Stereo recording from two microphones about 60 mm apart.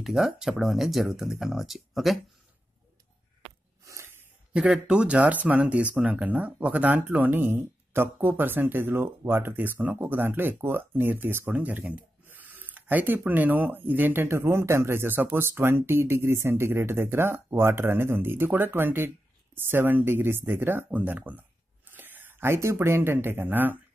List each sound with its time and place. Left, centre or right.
0.0 s speech: centre
3.8 s snort: right
4.6 s speech: centre; by 11.5 s right
11.5 s speech: right
21.9 s a sound: right
22.8 s speech: right
23.1 s speech: right